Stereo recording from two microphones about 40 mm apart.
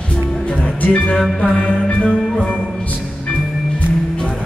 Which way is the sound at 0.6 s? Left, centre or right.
Left.